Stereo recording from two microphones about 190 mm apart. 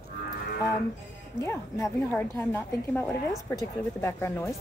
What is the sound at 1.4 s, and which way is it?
A woman's voice, 15° left (ahead or behind).